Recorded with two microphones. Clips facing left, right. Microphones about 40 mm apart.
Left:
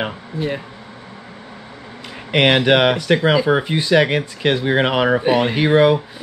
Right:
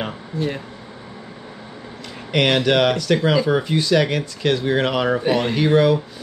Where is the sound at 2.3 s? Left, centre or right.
Left.